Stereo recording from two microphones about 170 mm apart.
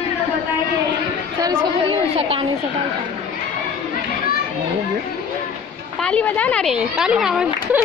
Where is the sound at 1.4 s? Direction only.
30° right (ahead or behind).